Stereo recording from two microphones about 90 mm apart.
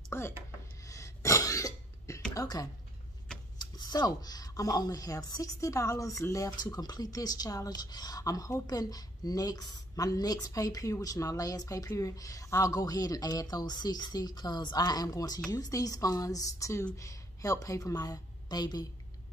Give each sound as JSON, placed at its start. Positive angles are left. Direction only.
{"t": 0.1, "sound": "a sound", "side_deg": 25}
{"t": 0.8, "sound": "throat clearing", "side_deg": 35}
{"t": 2.3, "sound": "a woman's voice", "side_deg": 40}